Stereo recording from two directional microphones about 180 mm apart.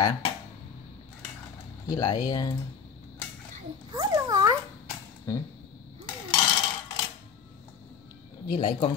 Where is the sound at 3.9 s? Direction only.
20° right (ahead or behind).